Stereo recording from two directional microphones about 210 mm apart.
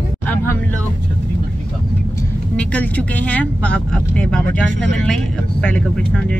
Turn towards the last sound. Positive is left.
turn(degrees=5)  # may be behind; listen again after turning